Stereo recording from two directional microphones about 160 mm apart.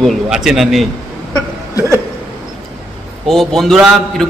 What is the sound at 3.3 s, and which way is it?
A man's voice, centre (ahead or behind).